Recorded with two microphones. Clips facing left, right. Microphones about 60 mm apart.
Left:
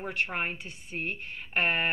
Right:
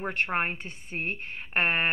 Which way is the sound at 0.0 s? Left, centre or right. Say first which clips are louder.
Right 3 dB; right.